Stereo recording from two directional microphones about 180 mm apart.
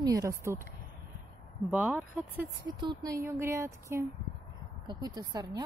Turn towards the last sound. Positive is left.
turn(degrees=-20)  # may be behind; listen again after turning